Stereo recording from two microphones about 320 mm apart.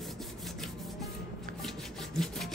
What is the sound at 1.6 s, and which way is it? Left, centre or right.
Wood, centre.